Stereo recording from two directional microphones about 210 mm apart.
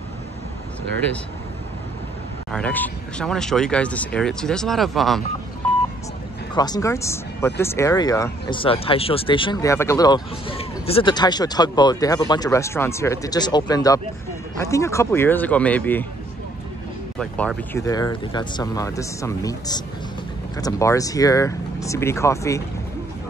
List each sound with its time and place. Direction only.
2.5 s speech: 5° left (ahead or behind)
6.5 s speech: 20° left (ahead or behind)
17.2 s speech: 5° left (ahead or behind)
17.7 s speech: 15° left (ahead or behind)